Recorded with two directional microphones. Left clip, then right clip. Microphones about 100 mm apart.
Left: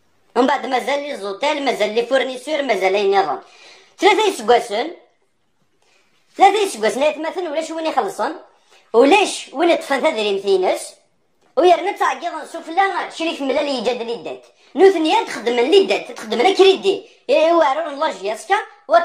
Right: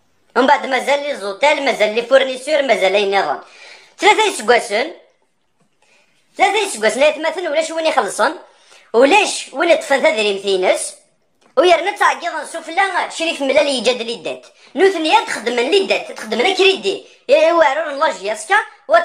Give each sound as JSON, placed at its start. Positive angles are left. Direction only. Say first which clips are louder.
{"t": 0.3, "sound": "a woman's voice", "louder": "right 3 dB", "side_deg": 25}
{"t": 6.3, "sound": "a woman's voice", "louder": "left 2 dB", "side_deg": 45}
{"t": 7.0, "sound": "a woman's voice", "louder": "right 4 dB", "side_deg": 5}
{"t": 8.9, "sound": "a woman's voice", "louder": "right 1 dB", "side_deg": 30}
{"t": 13.7, "sound": "a woman's voice", "louder": "right 3 dB", "side_deg": -10}
{"t": 14.7, "sound": "a woman's voice", "louder": "left 2 dB", "side_deg": 15}
{"t": 15.0, "sound": "a woman's voice", "louder": "right 3 dB", "side_deg": 35}
{"t": 17.3, "sound": "a woman's voice", "louder": "right 2 dB", "side_deg": 20}